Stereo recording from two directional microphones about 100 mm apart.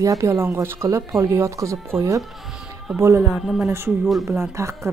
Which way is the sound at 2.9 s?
5° right (ahead or behind).